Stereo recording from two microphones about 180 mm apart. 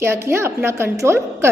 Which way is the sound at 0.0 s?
15° right (ahead or behind).